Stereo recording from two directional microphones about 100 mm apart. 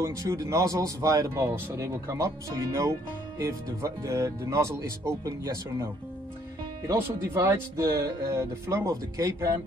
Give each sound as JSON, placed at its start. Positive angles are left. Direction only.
{"t": 0.0, "sound": "speech", "side_deg": -30}
{"t": 6.9, "sound": "speech", "side_deg": -25}